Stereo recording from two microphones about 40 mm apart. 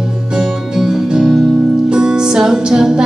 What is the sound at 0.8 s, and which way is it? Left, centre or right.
Music, centre.